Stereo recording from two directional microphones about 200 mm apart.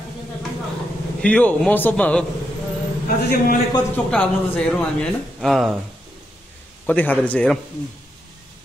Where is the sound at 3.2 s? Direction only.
50° left (ahead or behind).